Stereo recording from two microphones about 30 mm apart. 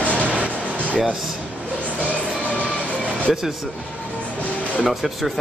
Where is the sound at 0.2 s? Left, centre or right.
Right.